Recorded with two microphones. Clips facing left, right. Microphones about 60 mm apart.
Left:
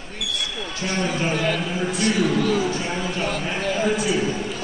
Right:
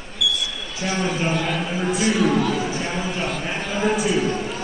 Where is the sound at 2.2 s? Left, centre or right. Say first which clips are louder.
Even; right.